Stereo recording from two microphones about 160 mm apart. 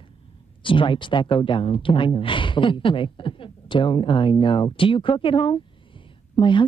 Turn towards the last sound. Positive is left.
turn(degrees=30)  # may be behind; listen again after turning